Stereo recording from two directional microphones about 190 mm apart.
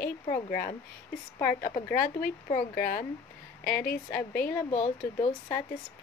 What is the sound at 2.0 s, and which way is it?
A woman's voice, 50° left (ahead or behind).